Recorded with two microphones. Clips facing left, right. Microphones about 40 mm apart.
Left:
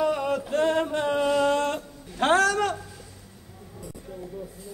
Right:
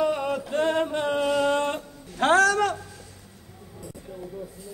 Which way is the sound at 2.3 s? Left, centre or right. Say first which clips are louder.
Right 2 dB; right.